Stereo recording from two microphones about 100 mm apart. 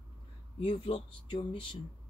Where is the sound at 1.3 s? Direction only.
55° left (ahead or behind).